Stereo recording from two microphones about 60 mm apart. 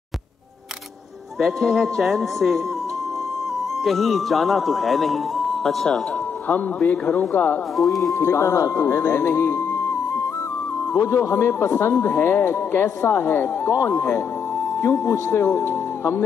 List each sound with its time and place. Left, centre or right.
1.4 s speech: centre
3.8 s speech: centre
6.9 s speech: left
7.7 s speech: centre
8.1 s speech: left
10.9 s speech: left